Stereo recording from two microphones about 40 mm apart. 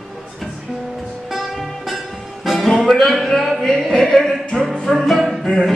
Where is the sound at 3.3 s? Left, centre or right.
Centre.